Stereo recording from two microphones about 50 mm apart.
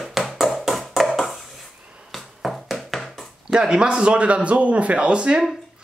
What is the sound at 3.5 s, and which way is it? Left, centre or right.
A man's voice, centre.